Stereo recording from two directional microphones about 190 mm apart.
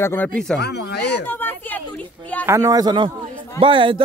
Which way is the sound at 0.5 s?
60° left (ahead or behind).